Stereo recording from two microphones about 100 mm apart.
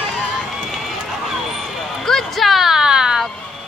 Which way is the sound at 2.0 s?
Centre (ahead or behind).